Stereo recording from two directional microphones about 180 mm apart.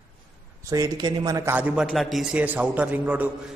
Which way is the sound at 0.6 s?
20° right (ahead or behind).